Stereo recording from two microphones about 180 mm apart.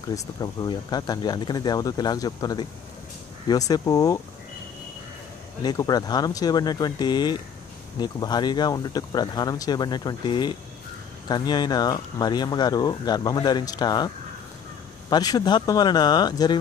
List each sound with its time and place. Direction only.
0.1 s speech: 20° left (ahead or behind)
5.6 s speech: 20° left (ahead or behind)